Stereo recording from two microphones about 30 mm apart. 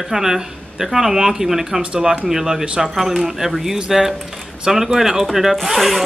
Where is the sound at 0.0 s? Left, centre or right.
Centre.